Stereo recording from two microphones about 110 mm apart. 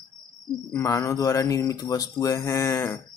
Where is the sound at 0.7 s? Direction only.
25° left (ahead or behind).